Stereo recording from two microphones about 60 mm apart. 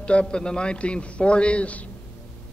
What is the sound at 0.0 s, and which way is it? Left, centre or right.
A man's voice, centre.